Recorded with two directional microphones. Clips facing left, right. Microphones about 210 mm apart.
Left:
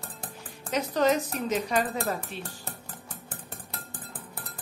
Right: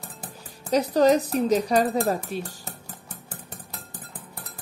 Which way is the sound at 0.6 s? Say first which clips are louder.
Right 6 dB; 35° right (ahead or behind).